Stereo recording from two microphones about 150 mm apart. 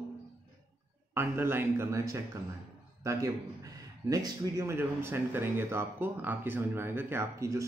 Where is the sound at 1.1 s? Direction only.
15° right (ahead or behind).